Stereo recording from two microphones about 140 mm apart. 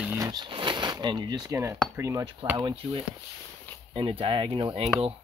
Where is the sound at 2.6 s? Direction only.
35° right (ahead or behind).